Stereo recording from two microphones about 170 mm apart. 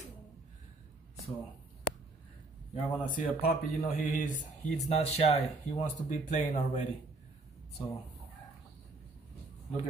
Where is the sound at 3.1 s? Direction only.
60° left (ahead or behind).